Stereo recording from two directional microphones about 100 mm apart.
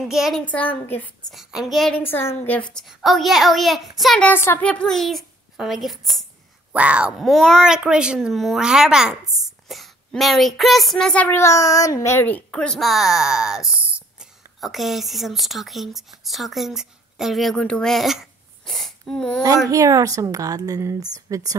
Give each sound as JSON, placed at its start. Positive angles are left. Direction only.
{"t": 0.1, "sound": "speech", "side_deg": -5}
{"t": 0.5, "sound": "speech", "side_deg": 15}
{"t": 1.3, "sound": "speech", "side_deg": -5}
{"t": 2.0, "sound": "a woman's voice", "side_deg": 20}
{"t": 2.7, "sound": "speech", "side_deg": 0}
{"t": 4.2, "sound": "a woman's voice", "side_deg": 20}
{"t": 4.6, "sound": "a child's voice", "side_deg": 10}
{"t": 6.7, "sound": "speech", "side_deg": -10}
{"t": 11.2, "sound": "speech", "side_deg": 30}
{"t": 13.7, "sound": "a sound", "side_deg": -15}
{"t": 14.6, "sound": "a woman's voice", "side_deg": 0}
{"t": 19.4, "sound": "speech", "side_deg": -35}